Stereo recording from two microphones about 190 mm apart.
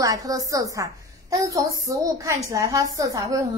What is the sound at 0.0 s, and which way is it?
A woman's voice, 20° right (ahead or behind).